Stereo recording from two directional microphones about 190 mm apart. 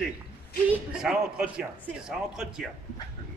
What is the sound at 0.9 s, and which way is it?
Speech, 5° right (ahead or behind).